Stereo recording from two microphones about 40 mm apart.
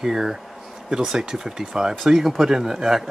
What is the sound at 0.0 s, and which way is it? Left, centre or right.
Speech, centre.